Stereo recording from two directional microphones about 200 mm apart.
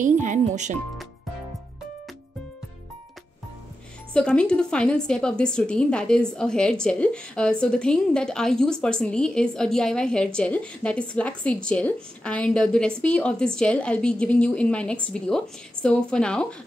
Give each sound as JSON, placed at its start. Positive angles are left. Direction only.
{"t": 0.0, "sound": "speech", "side_deg": -40}
{"t": 4.1, "sound": "a woman's voice", "side_deg": 5}